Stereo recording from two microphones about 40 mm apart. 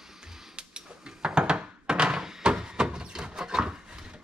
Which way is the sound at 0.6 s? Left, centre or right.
Right.